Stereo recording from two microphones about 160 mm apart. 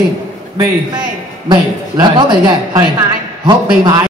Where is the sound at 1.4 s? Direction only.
30° right (ahead or behind).